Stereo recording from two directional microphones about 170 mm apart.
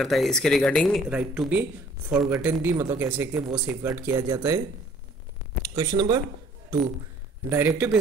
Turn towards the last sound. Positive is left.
turn(degrees=-15)  # may be behind; listen again after turning